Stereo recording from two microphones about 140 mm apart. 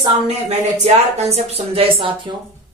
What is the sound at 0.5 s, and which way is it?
Speech, 50° right (ahead or behind).